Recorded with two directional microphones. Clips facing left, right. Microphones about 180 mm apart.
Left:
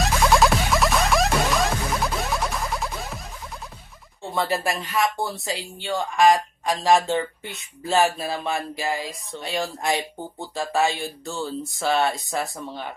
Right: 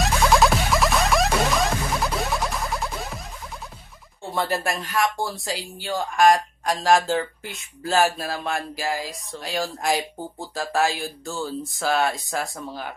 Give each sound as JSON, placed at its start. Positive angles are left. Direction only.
{"t": 0.0, "sound": "music", "side_deg": 0}
{"t": 4.3, "sound": "speech", "side_deg": 0}